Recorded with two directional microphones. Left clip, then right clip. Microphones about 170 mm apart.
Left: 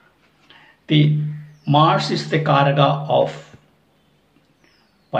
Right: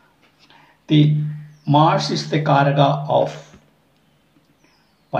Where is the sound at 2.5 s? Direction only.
Centre (ahead or behind).